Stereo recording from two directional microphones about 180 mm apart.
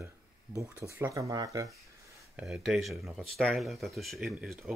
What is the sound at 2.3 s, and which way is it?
Speech, centre (ahead or behind).